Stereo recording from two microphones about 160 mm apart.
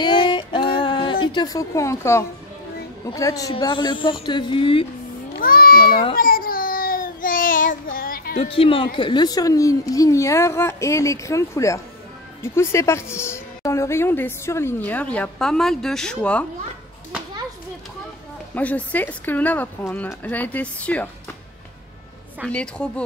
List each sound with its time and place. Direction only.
0.0 s a sound: 30° left (ahead or behind)
3.1 s speech: 20° left (ahead or behind)
5.4 s speech: 65° left (ahead or behind)
6.1 s child singing: 65° left (ahead or behind)
8.4 s a woman's voice: 35° left (ahead or behind); by 16.4 s 5° left (ahead or behind)
18.5 s a woman's voice: 10° left (ahead or behind)
22.5 s a woman's voice: 5° left (ahead or behind)